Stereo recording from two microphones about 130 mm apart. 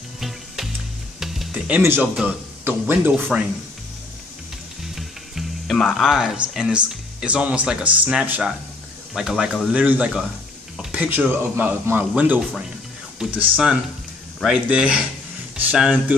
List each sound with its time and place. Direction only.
1.2 s music: centre (ahead or behind)
1.7 s speech: 15° right (ahead or behind)
4.9 s music: centre (ahead or behind)
5.9 s speech: 5° right (ahead or behind)